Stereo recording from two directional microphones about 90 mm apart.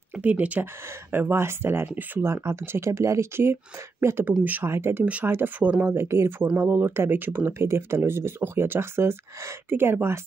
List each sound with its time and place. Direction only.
0.1 s speech: 15° right (ahead or behind)
4.6 s speech: 30° right (ahead or behind)
5.9 s speech: 30° right (ahead or behind)